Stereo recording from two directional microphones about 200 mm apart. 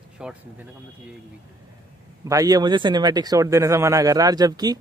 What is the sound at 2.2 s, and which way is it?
Speech, 15° right (ahead or behind).